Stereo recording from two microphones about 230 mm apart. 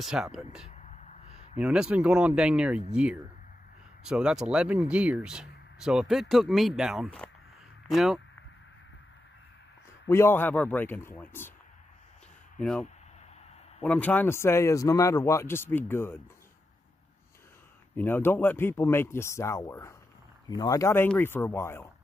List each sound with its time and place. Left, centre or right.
0.0 s speech: centre
0.7 s gasp: left
1.6 s speech: centre
10.0 s speech: centre
12.5 s speech: centre
13.8 s speech: centre
17.9 s speech: centre